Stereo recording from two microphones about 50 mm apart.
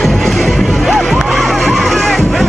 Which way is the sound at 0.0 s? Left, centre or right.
Centre.